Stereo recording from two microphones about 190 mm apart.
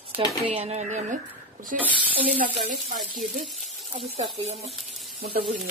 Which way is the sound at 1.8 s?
10° right (ahead or behind).